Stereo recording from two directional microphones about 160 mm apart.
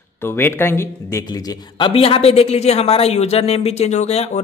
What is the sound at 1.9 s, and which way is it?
Speech, 35° left (ahead or behind).